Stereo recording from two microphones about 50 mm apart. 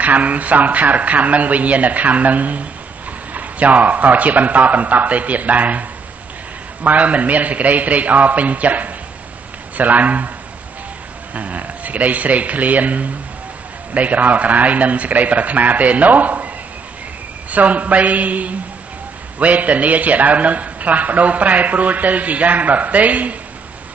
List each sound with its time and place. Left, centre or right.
0.0 s a man's voice: right
11.3 s a man's voice: right
17.5 s a man's voice: right